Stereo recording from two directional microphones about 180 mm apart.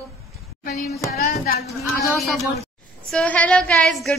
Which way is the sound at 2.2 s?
Centre (ahead or behind).